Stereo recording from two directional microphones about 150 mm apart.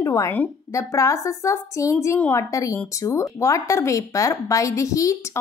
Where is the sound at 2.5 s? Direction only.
20° left (ahead or behind).